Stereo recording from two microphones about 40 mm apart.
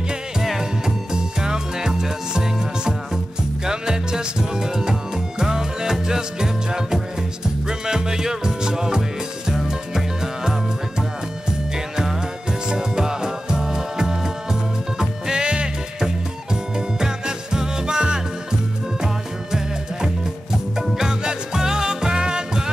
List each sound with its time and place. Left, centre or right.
0.4 s music: centre
0.8 s music: centre
12.6 s music: centre
21.0 s music: centre